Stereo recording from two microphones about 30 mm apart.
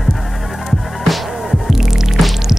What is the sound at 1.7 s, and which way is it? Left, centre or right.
Music, centre.